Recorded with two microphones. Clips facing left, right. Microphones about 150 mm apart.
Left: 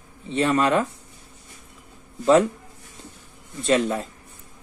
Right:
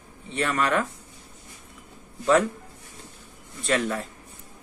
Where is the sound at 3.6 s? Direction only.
20° left (ahead or behind).